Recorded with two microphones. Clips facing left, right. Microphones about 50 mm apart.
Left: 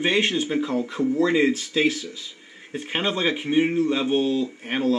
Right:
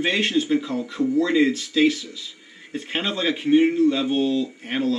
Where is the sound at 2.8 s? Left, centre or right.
Centre.